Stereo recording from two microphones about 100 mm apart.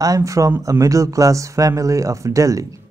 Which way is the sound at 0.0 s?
35° right (ahead or behind).